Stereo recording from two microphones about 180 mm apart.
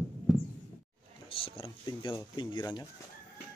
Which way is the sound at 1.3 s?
30° left (ahead or behind).